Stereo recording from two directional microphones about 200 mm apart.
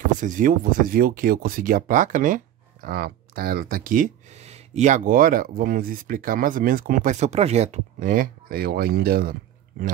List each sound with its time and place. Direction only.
0.2 s speech: 40° right (ahead or behind)